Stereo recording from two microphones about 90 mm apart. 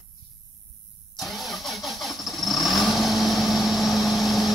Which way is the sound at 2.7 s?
Centre (ahead or behind).